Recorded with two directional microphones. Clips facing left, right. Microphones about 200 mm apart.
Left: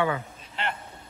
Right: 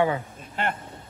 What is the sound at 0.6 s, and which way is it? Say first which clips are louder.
Speech: right 4 dB; 50° right (ahead or behind).